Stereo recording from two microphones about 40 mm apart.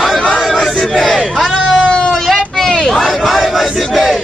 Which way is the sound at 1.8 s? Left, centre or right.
Left.